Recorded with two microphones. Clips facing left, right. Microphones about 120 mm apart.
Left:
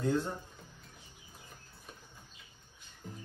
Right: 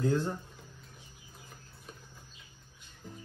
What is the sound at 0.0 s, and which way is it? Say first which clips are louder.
Speech: right 2 dB; centre (ahead or behind).